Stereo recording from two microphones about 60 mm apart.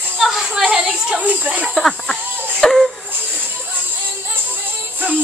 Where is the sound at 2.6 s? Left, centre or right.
Centre.